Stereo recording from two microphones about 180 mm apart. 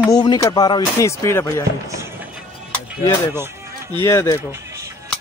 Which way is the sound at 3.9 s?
15° left (ahead or behind).